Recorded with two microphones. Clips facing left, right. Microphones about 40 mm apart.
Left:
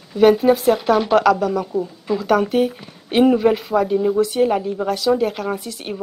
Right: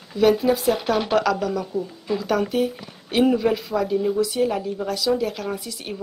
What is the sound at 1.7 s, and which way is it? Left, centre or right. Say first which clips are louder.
A woman's voice: left 4 dB; left.